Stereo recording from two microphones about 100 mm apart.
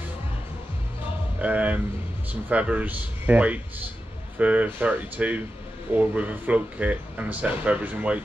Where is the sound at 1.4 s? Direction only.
15° right (ahead or behind).